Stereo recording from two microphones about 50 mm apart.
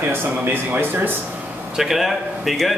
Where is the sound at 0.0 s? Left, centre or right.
Right.